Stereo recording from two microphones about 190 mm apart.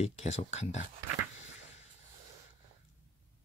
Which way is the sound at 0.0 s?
35° left (ahead or behind).